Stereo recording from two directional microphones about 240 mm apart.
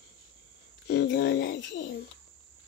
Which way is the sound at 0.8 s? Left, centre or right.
Left.